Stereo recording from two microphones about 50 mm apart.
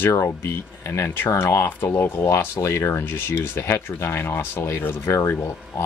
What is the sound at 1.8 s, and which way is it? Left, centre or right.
Speech, left.